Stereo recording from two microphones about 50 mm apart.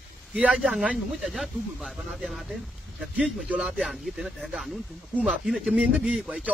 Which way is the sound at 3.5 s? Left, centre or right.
Right.